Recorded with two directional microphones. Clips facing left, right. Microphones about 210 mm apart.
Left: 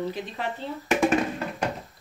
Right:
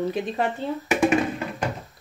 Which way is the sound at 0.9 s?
10° right (ahead or behind).